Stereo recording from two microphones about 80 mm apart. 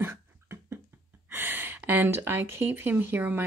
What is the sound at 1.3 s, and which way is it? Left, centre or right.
Speech, right.